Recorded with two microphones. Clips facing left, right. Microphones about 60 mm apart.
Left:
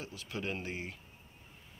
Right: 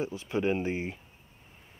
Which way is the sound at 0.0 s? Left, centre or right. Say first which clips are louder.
Right 10 dB; right.